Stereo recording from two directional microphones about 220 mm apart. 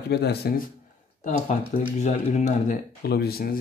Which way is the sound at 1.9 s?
30° left (ahead or behind).